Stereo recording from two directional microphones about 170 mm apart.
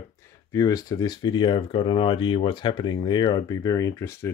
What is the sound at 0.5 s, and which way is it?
Speech, 20° left (ahead or behind).